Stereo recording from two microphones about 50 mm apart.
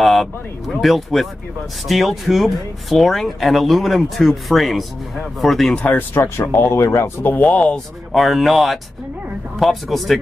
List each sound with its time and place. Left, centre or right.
0.0 s speech: centre
5.9 s speech: left
6.2 s speech: left
7.4 s speech: left
8.1 s speech: centre